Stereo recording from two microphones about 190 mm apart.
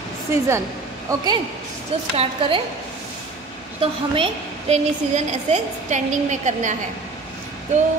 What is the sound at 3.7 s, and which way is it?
A woman's voice, 30° right (ahead or behind).